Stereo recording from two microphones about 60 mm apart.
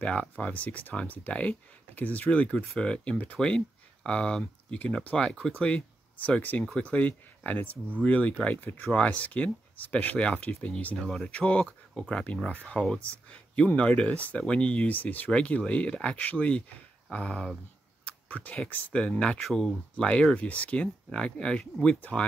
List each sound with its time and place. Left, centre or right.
0.0 s speech: left
8.9 s speech: left
11.0 s speech: centre
11.2 s speech: centre
19.4 s speech: centre